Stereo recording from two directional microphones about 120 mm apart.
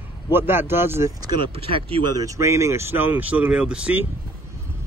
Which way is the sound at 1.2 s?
50° right (ahead or behind).